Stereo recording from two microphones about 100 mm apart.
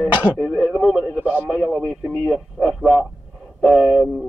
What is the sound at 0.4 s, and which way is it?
Radio, centre (ahead or behind).